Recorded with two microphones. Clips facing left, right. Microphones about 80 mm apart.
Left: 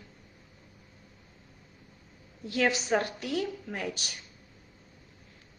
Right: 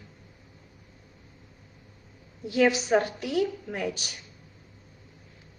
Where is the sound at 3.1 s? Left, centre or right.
Centre.